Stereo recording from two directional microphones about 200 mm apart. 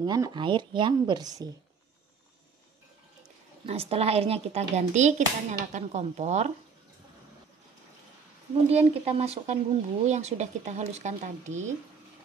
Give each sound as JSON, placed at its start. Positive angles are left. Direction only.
{"t": 0.0, "sound": "speech", "side_deg": -20}
{"t": 3.6, "sound": "speech", "side_deg": -30}
{"t": 8.6, "sound": "speech", "side_deg": -30}